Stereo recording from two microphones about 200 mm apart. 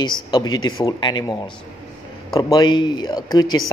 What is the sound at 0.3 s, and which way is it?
Speech, 20° left (ahead or behind).